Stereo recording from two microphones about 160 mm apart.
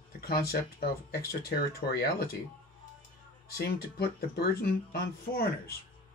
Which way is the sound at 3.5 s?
80° left.